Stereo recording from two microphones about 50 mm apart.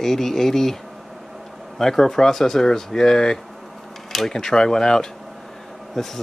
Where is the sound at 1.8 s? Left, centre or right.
Centre.